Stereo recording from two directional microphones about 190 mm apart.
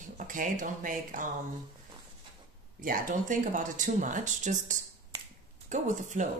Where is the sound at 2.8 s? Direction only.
45° right (ahead or behind).